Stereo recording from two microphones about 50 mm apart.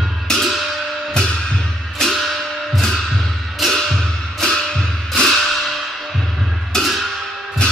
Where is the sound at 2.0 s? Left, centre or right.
Centre.